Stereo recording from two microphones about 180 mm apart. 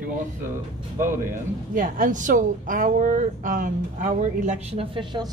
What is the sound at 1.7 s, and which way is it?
A woman's voice, 50° right (ahead or behind).